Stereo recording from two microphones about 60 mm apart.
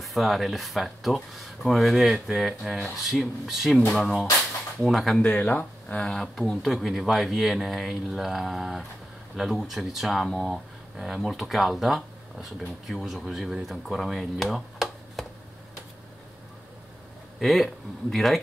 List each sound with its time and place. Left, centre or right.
0.0 s speech: centre
4.8 s speech: centre
5.4 s speech: left
5.9 s speech: centre
17.4 s speech: centre